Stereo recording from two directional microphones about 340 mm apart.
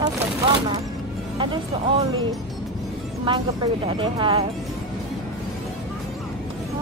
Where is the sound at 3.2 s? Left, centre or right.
Centre.